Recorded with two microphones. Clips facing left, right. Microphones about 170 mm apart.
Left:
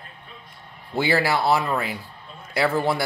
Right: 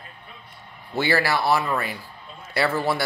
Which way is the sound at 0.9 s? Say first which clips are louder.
Left 1 dB; 20° left (ahead or behind).